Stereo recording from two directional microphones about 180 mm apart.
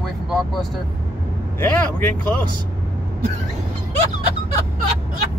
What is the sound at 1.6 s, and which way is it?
Vehicle, 10° left (ahead or behind).